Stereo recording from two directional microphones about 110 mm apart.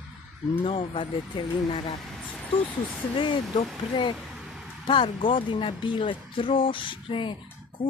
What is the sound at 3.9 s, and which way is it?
Speech, 45° left (ahead or behind).